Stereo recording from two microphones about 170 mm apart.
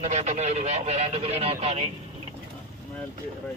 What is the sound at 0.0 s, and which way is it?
Speech, 40° right (ahead or behind).